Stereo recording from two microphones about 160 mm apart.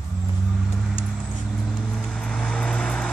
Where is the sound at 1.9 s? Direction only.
5° left (ahead or behind).